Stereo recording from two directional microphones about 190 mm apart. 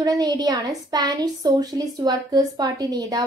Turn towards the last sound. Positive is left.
turn(degrees=-20)  # may be behind; listen again after turning